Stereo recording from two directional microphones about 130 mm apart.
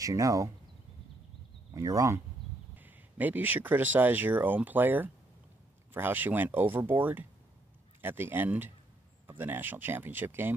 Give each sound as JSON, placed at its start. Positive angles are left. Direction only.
{"t": 0.0, "sound": "speech", "side_deg": -25}
{"t": 1.7, "sound": "speech", "side_deg": -25}